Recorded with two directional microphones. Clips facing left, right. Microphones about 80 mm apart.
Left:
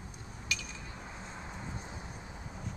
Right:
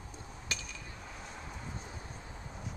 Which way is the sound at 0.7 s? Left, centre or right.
Left.